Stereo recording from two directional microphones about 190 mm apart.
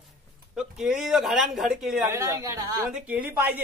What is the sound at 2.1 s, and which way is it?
Speech, 15° right (ahead or behind).